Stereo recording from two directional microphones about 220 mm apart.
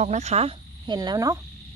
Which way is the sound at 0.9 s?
15° right (ahead or behind).